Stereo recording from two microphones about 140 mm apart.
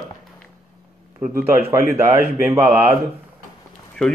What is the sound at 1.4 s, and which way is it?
Speech, 15° right (ahead or behind).